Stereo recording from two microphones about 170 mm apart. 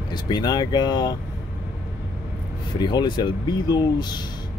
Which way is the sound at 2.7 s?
25° left (ahead or behind).